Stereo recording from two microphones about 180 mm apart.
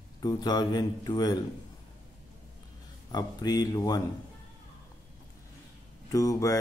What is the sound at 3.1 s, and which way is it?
Speech, 20° left (ahead or behind).